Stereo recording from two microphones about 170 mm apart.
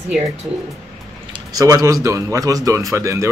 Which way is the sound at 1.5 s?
20° right (ahead or behind).